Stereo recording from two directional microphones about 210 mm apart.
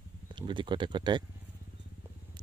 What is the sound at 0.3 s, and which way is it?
Speech, 20° right (ahead or behind).